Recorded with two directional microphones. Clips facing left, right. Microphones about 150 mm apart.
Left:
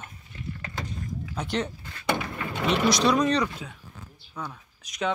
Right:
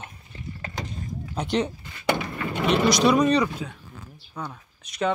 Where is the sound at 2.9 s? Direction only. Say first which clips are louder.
Right 4 dB; 5° right (ahead or behind).